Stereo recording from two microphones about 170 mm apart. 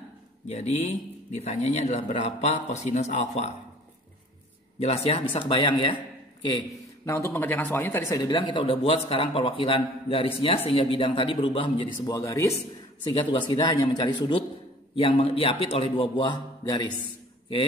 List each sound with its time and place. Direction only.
0.5 s a man's voice: 40° left (ahead or behind)
4.7 s a man's voice: 35° left (ahead or behind)
7.1 s speech: 15° left (ahead or behind)
8.1 s a man's voice: 25° left (ahead or behind)
13.1 s a man's voice: 30° left (ahead or behind)